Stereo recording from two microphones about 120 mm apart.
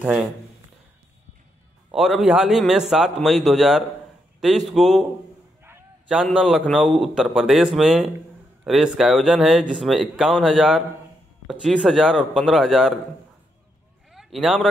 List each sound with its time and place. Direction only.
0.0 s speech: 5° right (ahead or behind)
1.9 s speech: centre (ahead or behind)
5.6 s a sound: 20° right (ahead or behind)
6.0 s speech: 5° right (ahead or behind)
14.1 s speech: centre (ahead or behind)